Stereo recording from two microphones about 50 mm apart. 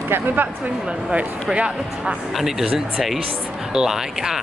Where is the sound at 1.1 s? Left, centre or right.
Right.